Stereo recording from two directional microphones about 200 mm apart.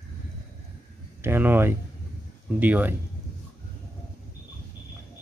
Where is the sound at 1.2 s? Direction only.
10° right (ahead or behind).